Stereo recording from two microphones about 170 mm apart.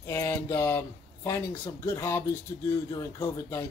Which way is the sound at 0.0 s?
15° left (ahead or behind).